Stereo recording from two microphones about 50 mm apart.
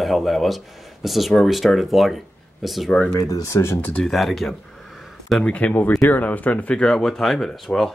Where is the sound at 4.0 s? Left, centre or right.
Centre.